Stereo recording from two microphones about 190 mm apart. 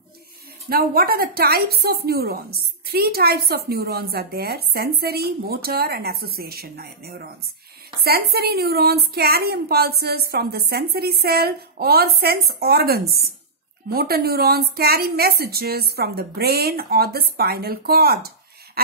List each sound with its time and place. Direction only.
0.7 s a woman's voice: 50° right (ahead or behind)